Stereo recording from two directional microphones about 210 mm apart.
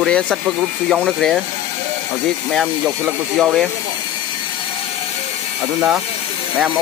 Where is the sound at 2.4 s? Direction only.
Centre (ahead or behind).